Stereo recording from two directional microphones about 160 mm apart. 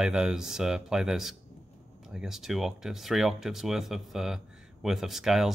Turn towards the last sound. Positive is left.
turn(degrees=0)  # may be behind; listen again after turning